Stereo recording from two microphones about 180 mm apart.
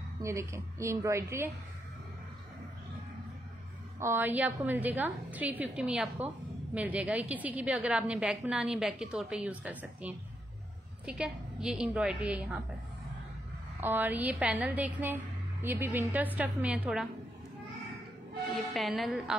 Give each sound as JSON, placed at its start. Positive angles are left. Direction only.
{"t": 0.2, "sound": "a woman's voice", "side_deg": -15}
{"t": 4.0, "sound": "a woman's voice", "side_deg": -10}
{"t": 13.7, "sound": "a woman's voice", "side_deg": -10}
{"t": 18.7, "sound": "a woman's voice", "side_deg": 0}